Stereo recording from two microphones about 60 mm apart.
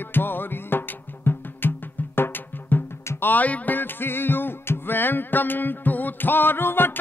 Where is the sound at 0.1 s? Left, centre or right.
Left.